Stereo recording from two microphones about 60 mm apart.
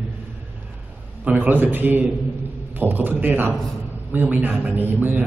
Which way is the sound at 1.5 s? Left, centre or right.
Right.